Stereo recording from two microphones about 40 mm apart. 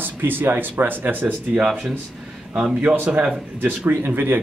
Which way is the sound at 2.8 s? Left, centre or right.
Right.